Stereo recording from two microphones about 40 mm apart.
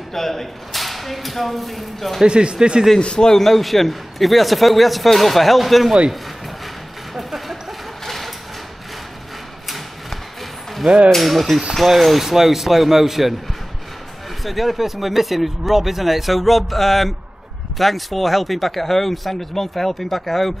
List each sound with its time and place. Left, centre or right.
0.1 s speech: centre
2.2 s speech: right
3.0 s a man's voice: left
3.3 s speech: centre
7.2 s a sound: centre
11.1 s speech: centre
14.4 s speech: centre